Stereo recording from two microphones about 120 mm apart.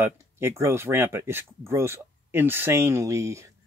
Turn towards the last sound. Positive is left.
turn(degrees=-25)  # may be behind; listen again after turning